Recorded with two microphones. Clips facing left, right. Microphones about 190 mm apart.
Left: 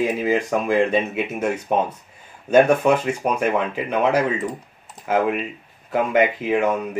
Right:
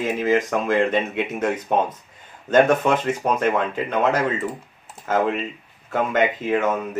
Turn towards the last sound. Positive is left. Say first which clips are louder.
# left 2 dB
turn(degrees=10)  # may be behind; listen again after turning